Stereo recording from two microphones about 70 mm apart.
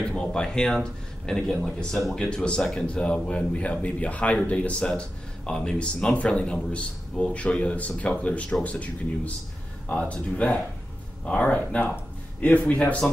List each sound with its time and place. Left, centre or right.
0.1 s speech: centre